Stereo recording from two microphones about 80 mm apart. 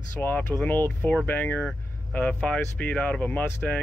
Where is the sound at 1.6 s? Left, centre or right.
Centre.